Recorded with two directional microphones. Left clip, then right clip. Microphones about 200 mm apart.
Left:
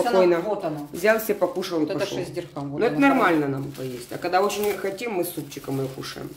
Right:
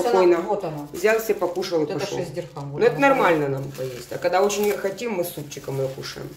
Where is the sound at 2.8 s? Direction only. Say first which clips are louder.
Right 2 dB; 5° left (ahead or behind).